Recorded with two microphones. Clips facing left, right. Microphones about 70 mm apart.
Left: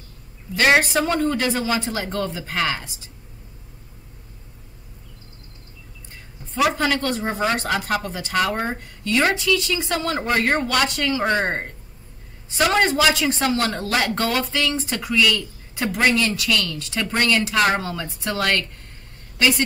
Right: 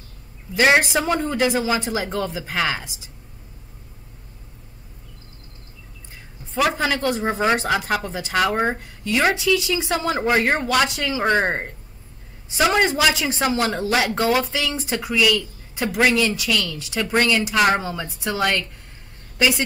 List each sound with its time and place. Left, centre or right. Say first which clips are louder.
0.6 s a woman's voice: even; centre
6.8 s a man's voice: even; centre